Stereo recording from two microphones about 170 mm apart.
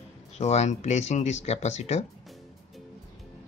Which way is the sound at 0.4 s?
40° left (ahead or behind).